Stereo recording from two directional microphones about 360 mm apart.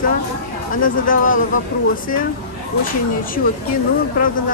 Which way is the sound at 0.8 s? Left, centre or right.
Left.